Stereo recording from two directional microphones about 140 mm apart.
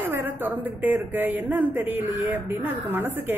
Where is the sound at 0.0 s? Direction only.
15° right (ahead or behind).